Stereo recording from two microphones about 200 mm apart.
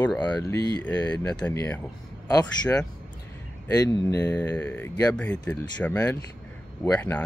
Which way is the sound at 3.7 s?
15° left (ahead or behind).